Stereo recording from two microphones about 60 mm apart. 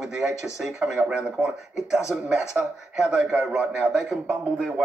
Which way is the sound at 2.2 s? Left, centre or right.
Centre.